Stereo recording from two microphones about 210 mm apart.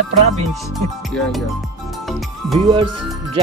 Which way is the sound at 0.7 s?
Centre (ahead or behind).